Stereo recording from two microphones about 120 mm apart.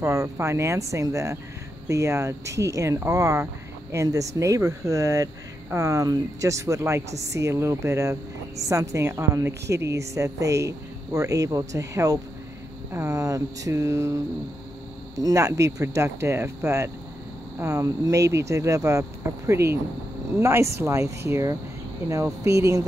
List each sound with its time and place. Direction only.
0.0 s speech: 25° right (ahead or behind)
15.1 s speech: 25° right (ahead or behind)